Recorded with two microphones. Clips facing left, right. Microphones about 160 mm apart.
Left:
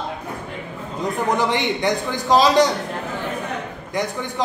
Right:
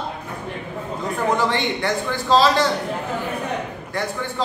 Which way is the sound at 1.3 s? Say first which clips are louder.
Left 1 dB; 15° left (ahead or behind).